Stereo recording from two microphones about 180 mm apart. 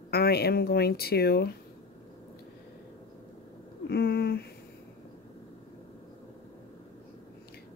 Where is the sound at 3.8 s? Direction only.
60° left (ahead or behind).